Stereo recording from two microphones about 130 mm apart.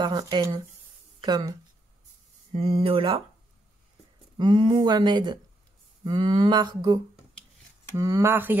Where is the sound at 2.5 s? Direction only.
50° right (ahead or behind).